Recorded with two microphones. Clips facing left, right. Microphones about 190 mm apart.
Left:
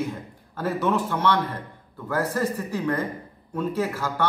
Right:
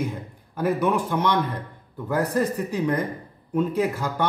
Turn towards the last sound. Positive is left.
turn(degrees=-15)  # may be behind; listen again after turning